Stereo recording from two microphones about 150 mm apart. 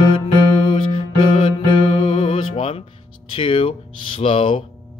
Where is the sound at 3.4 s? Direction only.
35° left (ahead or behind).